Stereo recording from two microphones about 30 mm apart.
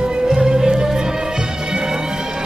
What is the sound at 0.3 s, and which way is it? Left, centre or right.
Music, centre.